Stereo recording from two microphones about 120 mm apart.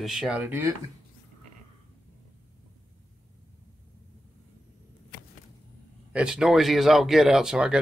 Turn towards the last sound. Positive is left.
turn(degrees=-5)  # may be behind; listen again after turning